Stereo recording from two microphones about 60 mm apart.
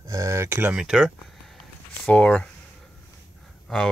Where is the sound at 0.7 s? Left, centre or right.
Centre.